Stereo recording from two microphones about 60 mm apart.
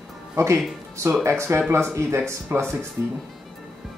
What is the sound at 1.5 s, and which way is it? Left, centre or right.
Speech, right.